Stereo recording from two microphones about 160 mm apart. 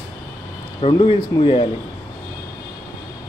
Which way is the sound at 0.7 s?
35° left (ahead or behind).